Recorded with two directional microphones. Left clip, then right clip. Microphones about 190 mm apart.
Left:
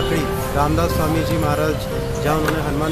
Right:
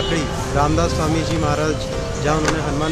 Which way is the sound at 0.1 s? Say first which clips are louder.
Even; 5° right (ahead or behind).